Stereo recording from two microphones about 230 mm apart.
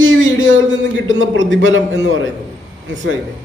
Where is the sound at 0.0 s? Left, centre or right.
Right.